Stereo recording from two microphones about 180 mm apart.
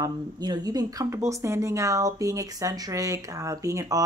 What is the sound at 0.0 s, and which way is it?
Speech, 20° right (ahead or behind).